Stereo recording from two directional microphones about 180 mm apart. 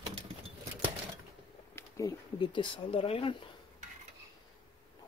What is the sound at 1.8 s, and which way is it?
Speech, 20° left (ahead or behind).